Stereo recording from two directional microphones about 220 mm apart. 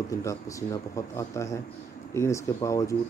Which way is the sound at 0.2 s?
15° left (ahead or behind).